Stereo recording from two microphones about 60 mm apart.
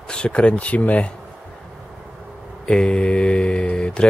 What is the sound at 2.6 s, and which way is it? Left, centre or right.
Speech, centre.